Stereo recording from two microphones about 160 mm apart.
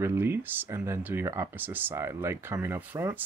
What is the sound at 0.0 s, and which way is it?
Speech, 15° right (ahead or behind).